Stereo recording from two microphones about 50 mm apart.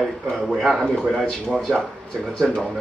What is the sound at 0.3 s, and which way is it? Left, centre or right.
Speech, centre.